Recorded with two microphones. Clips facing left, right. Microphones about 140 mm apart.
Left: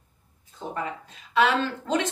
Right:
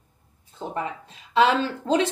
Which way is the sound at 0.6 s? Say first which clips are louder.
Right 2 dB; 30° right (ahead or behind).